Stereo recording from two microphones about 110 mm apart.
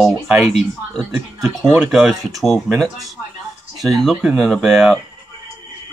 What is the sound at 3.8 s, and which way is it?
Speech, centre (ahead or behind).